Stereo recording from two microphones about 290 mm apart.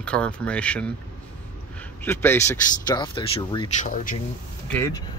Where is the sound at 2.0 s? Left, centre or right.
Centre; by 4.1 s left.